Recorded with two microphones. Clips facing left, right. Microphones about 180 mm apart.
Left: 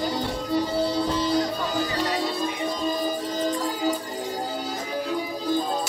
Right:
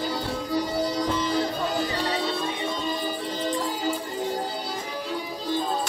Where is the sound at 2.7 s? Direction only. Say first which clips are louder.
Left 3 dB; 40° left (ahead or behind).